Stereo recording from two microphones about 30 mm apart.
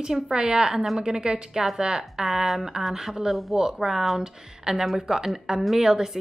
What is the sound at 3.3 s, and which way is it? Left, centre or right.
Speech, centre.